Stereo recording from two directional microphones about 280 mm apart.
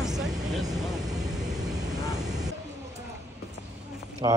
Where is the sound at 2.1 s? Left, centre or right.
Centre.